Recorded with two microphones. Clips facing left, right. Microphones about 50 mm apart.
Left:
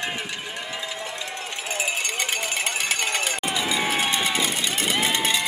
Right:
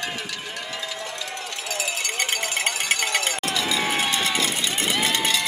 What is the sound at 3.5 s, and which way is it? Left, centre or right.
Run, centre.